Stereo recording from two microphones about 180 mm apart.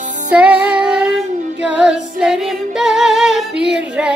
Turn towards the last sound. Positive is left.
turn(degrees=-5)  # may be behind; listen again after turning